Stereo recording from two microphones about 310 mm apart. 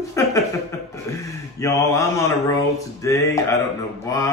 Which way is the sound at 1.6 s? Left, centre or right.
Centre.